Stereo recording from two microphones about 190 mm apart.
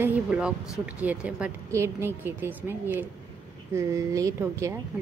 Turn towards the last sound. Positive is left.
turn(degrees=-15)  # may be behind; listen again after turning